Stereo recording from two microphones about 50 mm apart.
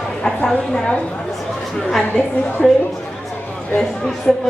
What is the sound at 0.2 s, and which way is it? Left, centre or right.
Speech, centre.